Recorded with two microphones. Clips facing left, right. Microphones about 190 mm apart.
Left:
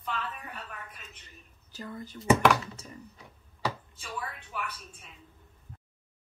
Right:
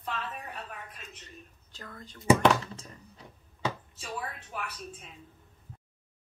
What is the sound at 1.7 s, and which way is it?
Speech, 10° left (ahead or behind).